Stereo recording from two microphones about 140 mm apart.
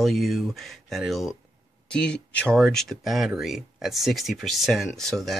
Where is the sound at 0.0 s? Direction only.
Centre (ahead or behind).